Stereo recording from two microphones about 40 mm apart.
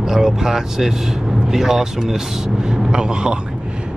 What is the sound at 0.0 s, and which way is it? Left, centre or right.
Speech, centre.